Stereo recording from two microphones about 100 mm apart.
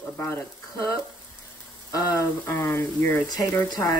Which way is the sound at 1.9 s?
35° left (ahead or behind).